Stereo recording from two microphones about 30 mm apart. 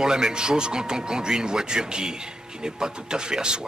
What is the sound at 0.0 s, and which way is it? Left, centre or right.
Speech, right.